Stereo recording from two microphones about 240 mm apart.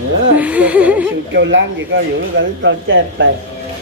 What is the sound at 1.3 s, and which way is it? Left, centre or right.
Speech, right.